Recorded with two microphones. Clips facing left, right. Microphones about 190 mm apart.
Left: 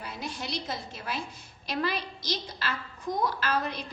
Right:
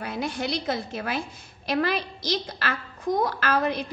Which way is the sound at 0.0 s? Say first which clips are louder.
Right 8 dB; 70° right (ahead or behind).